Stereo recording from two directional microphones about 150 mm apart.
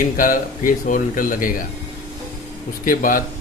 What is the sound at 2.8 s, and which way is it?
Speech, 65° left (ahead or behind).